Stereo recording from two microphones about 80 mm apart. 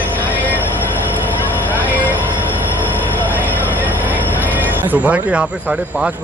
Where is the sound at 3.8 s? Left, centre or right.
Right.